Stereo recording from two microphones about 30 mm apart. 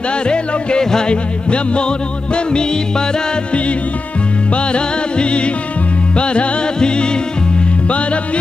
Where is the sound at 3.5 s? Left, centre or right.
Left.